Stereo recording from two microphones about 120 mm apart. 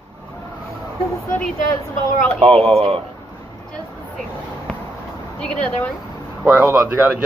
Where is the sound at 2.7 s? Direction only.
55° right (ahead or behind).